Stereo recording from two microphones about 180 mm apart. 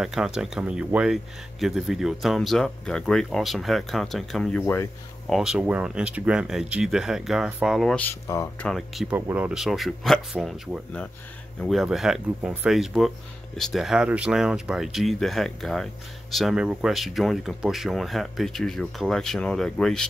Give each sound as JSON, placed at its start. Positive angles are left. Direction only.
{"t": 0.0, "sound": "speech", "side_deg": -5}
{"t": 5.3, "sound": "speech", "side_deg": -5}
{"t": 8.6, "sound": "speech", "side_deg": 0}